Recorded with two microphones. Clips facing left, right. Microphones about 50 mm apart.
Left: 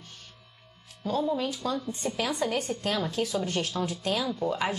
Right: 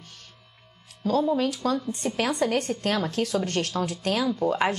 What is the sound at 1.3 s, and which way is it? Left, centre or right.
A woman's voice, right.